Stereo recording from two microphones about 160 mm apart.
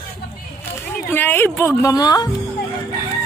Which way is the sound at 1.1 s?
10° left (ahead or behind).